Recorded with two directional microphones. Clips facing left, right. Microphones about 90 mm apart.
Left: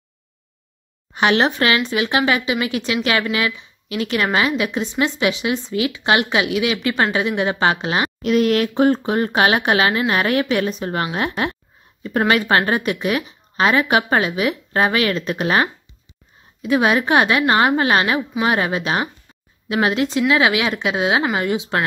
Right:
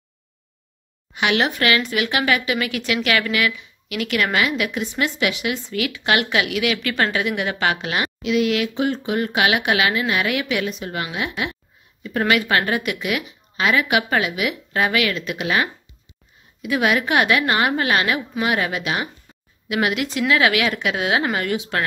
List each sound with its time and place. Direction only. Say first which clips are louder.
1.1 s a woman's voice: left 4 dB; 35° left (ahead or behind)
8.2 s a woman's voice: left 3 dB; 45° left (ahead or behind); by 21.8 s 25° left (ahead or behind)